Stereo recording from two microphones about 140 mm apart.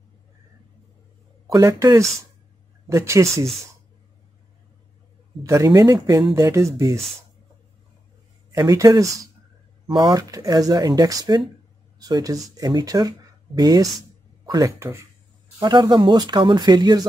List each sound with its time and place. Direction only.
1.5 s speech: 20° right (ahead or behind)
5.4 s speech: 20° right (ahead or behind)
8.5 s speech: 25° right (ahead or behind)